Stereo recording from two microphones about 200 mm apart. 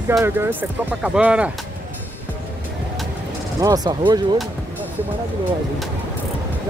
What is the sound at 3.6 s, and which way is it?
Speech, 20° right (ahead or behind).